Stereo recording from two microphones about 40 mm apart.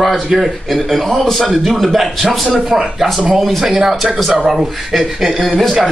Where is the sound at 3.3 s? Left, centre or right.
Centre.